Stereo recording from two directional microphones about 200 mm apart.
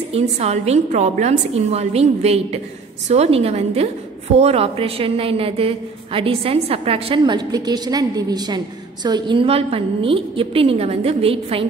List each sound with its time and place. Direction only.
0.1 s a woman's voice: 30° right (ahead or behind)